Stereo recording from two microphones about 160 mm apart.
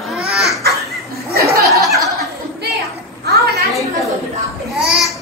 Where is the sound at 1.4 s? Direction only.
20° right (ahead or behind).